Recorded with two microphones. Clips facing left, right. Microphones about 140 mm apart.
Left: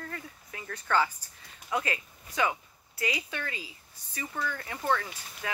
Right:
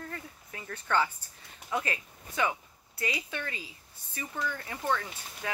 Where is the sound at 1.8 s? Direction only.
30° right (ahead or behind).